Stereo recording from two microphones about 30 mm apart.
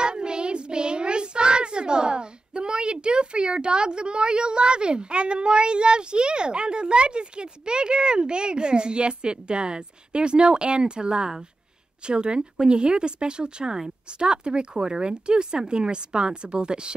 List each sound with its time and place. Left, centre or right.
0.0 s child singing: right
12.1 s speech: right